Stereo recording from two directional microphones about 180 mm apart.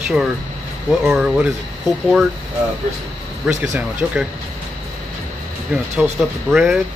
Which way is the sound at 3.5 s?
Centre (ahead or behind).